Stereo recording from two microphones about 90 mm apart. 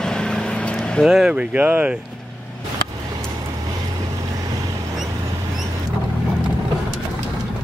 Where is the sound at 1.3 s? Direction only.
20° right (ahead or behind).